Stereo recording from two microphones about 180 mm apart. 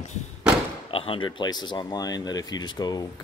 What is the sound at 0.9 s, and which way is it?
Speech, 30° left (ahead or behind).